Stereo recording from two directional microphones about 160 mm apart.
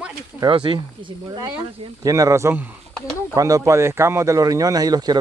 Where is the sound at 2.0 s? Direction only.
20° right (ahead or behind).